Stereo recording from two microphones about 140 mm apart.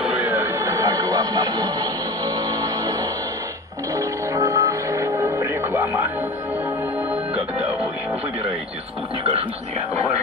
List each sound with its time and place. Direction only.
0.0 s music: 10° right (ahead or behind)